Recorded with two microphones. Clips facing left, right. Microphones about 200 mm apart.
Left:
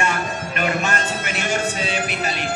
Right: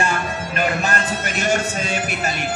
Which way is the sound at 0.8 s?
40° right (ahead or behind).